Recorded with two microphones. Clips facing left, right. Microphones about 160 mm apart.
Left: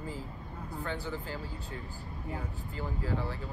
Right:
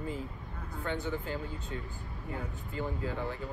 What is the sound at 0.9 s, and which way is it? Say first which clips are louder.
Speech: right 4 dB; 20° right (ahead or behind).